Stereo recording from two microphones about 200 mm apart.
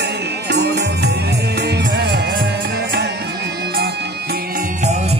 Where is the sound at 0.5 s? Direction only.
60° right (ahead or behind).